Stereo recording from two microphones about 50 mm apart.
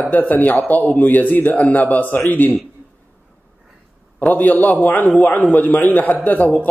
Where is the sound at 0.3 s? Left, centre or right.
Left.